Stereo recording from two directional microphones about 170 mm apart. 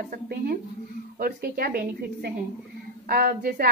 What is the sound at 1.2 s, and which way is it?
A woman's voice, 60° right (ahead or behind).